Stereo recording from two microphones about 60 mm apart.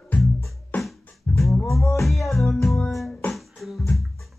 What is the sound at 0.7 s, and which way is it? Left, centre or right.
Music, left.